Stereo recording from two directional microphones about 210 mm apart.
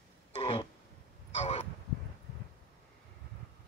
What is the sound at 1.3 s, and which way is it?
Crow, 30° left (ahead or behind).